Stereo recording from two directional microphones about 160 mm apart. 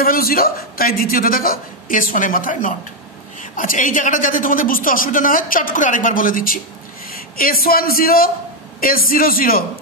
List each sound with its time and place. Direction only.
0.0 s a woman's voice: 65° left (ahead or behind)